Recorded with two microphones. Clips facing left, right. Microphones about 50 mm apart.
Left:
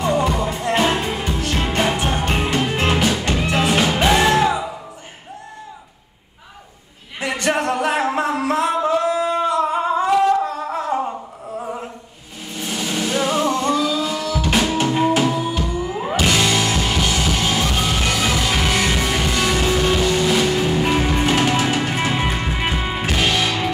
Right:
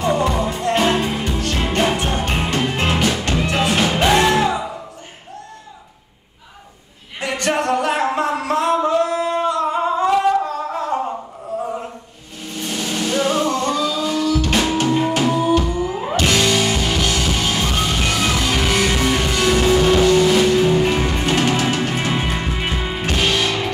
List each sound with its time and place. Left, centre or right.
0.2 s music: centre
7.2 s singing: centre
10.7 s humming: centre
12.5 s music: centre